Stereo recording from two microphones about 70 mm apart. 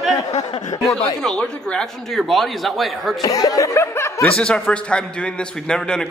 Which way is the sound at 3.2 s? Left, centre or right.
Left.